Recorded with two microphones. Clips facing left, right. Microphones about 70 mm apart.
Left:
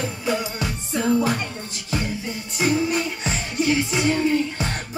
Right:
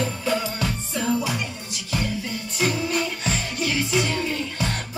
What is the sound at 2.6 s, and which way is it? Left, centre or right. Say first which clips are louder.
Music: left 3 dB; left.